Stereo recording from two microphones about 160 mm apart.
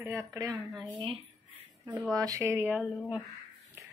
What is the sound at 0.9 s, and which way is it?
Speech, 35° right (ahead or behind).